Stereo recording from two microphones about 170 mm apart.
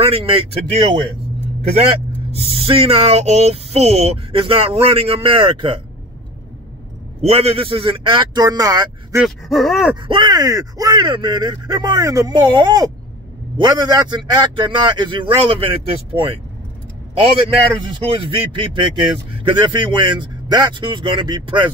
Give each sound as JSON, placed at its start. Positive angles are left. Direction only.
{"t": 0.0, "sound": "speech", "side_deg": -35}
{"t": 7.2, "sound": "speech", "side_deg": -35}
{"t": 9.2, "sound": "gasp", "side_deg": 0}
{"t": 10.0, "sound": "speech", "side_deg": -25}
{"t": 18.0, "sound": "speech", "side_deg": -30}